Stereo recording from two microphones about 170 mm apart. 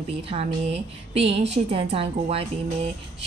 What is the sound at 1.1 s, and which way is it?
A woman's voice, 35° right (ahead or behind).